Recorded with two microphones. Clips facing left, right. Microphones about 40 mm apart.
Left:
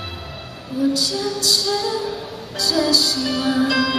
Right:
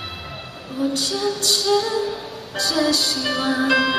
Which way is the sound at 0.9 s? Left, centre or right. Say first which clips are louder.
Even; right.